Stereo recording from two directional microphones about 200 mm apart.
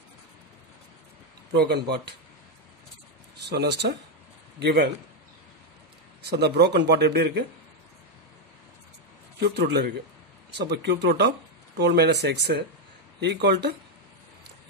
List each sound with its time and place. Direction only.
1.5 s speech: 55° right (ahead or behind)
3.4 s speech: 60° right (ahead or behind)
6.2 s speech: 55° right (ahead or behind)
9.4 s a man's voice: 55° right (ahead or behind)